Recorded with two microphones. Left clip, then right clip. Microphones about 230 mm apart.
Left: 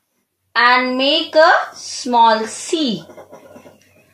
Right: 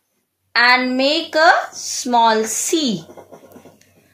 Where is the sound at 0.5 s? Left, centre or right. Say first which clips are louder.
Left 1 dB; right.